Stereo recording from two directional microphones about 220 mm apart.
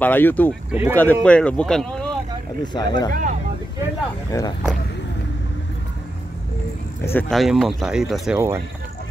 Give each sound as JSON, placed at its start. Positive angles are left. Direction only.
{"t": 0.0, "sound": "speech", "side_deg": 10}
{"t": 0.7, "sound": "speech", "side_deg": -10}
{"t": 0.9, "sound": "speech", "side_deg": 5}
{"t": 2.6, "sound": "speech", "side_deg": 20}
{"t": 3.1, "sound": "speech", "side_deg": -35}
{"t": 4.3, "sound": "speech", "side_deg": 15}
{"t": 7.1, "sound": "speech", "side_deg": 5}